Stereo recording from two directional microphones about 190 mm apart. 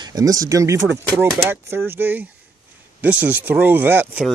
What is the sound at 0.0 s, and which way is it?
Speech, 20° right (ahead or behind).